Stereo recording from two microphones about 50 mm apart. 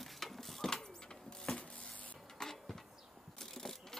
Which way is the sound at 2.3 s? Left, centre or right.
Centre.